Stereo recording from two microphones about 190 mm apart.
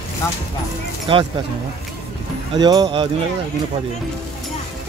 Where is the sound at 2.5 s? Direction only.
20° right (ahead or behind).